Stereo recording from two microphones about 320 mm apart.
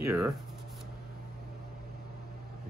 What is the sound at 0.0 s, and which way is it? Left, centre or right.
Speech, centre.